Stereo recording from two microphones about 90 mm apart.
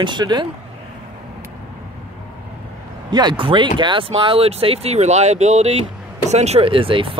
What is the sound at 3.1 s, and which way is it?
Speech, 55° right (ahead or behind).